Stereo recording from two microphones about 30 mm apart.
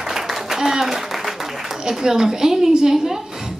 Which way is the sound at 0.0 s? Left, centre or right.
Centre.